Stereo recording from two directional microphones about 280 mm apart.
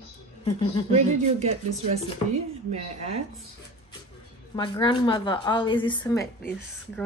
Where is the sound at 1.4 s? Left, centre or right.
Right.